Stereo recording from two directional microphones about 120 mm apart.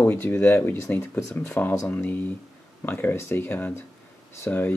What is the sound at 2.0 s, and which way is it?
Speech, 15° left (ahead or behind).